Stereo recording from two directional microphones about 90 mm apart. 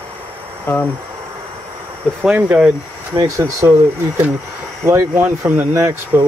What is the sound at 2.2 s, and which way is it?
Speech, 15° right (ahead or behind).